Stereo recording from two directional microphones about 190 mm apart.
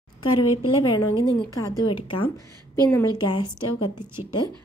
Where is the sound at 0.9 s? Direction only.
20° left (ahead or behind).